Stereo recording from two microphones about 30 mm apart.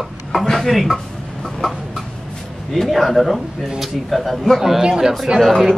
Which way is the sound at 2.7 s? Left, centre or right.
Centre.